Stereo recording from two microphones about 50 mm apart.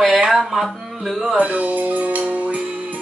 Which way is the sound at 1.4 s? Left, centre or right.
Right.